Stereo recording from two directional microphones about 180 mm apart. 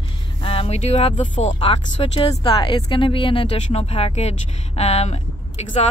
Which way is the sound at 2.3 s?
20° left (ahead or behind).